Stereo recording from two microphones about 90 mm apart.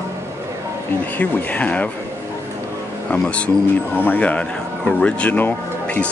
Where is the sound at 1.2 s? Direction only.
15° left (ahead or behind).